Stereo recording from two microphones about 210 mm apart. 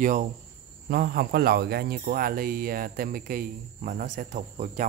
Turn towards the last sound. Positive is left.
turn(degrees=-35)  # may be behind; listen again after turning